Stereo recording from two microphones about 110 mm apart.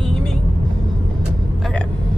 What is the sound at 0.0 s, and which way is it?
Vehicle, 5° left (ahead or behind).